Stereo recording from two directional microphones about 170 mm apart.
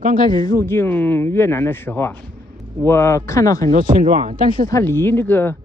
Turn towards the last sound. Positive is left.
turn(degrees=15)  # may be behind; listen again after turning